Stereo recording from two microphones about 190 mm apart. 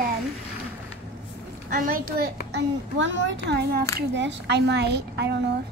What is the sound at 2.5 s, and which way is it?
A child's voice, 70° right (ahead or behind).